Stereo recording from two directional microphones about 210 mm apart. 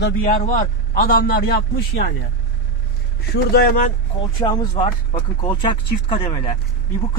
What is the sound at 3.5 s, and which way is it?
Speech, 40° left (ahead or behind).